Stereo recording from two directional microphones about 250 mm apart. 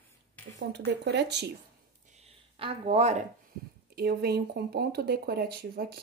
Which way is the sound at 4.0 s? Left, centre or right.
Right.